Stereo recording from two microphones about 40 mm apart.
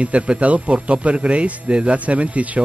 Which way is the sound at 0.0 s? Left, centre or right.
Right.